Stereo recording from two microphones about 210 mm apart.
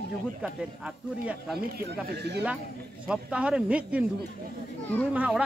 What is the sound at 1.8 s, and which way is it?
Speech, 50° right (ahead or behind).